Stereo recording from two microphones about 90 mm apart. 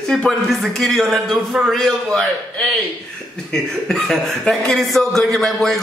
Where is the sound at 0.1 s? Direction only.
Centre (ahead or behind).